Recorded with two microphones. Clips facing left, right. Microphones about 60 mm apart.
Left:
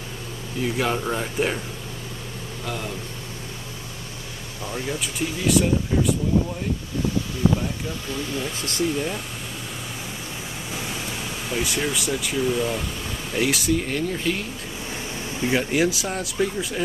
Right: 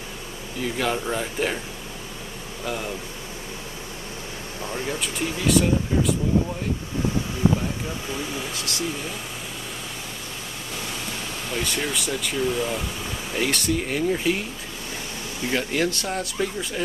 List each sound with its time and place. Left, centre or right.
0.7 s speech: centre
2.6 s speech: centre
4.8 s speech: centre
8.1 s speech: centre
8.5 s speech: left
10.8 s speech: centre
15.4 s speech: centre